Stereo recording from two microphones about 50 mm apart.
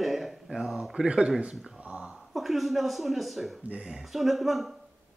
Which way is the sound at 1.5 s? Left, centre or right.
Centre.